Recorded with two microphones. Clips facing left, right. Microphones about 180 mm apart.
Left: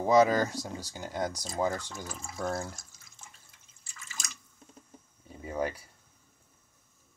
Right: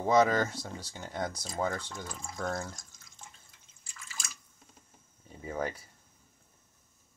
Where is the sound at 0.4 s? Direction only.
40° left (ahead or behind).